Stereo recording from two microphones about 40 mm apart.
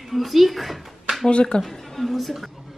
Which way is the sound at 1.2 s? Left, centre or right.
Left.